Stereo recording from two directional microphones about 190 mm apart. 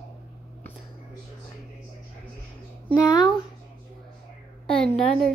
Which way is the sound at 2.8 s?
20° left (ahead or behind).